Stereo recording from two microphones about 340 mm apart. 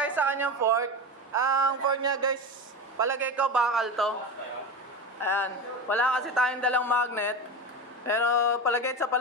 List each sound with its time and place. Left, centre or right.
0.0 s a woman's voice: centre
1.3 s a sound: centre
3.0 s a man's voice: centre
5.2 s a man's voice: centre